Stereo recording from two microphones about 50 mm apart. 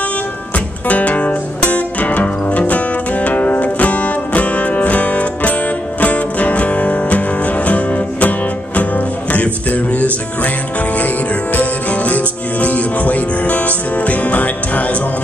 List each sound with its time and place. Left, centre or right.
0.8 s music: left
11.5 s music: left